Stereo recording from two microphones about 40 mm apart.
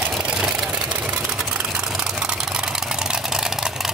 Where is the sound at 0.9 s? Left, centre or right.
Right.